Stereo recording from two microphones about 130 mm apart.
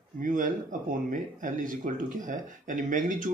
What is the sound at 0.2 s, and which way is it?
Speech, 85° right.